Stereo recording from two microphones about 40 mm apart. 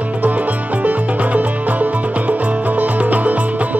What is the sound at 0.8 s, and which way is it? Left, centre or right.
Music, right.